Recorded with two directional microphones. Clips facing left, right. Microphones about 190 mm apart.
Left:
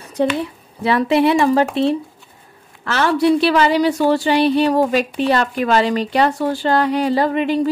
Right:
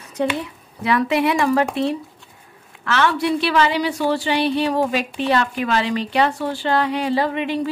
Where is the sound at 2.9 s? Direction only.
40° left (ahead or behind).